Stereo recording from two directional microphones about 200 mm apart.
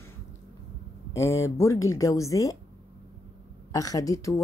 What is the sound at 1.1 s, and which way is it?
Speech, 15° left (ahead or behind).